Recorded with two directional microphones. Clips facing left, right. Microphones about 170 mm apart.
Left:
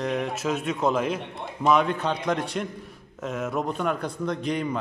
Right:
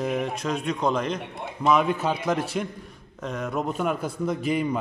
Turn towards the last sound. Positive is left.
turn(degrees=-5)  # may be behind; listen again after turning